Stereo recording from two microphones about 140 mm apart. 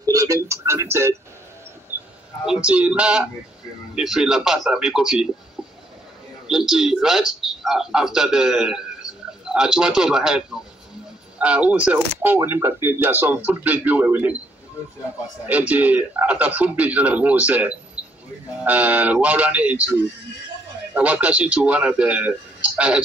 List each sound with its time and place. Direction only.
0.0 s a sound: 25° right (ahead or behind)
2.4 s a man's voice: 5° right (ahead or behind)
6.4 s a man's voice: 5° right (ahead or behind)
15.4 s speech: 10° right (ahead or behind)